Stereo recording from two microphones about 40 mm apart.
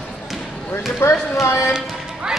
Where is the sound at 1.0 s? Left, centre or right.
Left.